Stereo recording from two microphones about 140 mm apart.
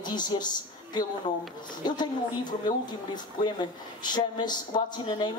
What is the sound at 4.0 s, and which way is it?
A woman's voice, 30° left (ahead or behind).